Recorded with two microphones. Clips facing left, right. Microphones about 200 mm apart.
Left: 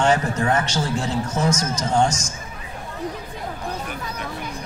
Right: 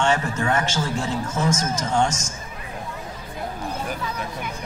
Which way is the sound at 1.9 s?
30° left (ahead or behind).